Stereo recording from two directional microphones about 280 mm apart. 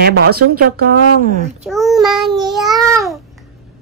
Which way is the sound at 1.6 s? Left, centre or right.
Centre.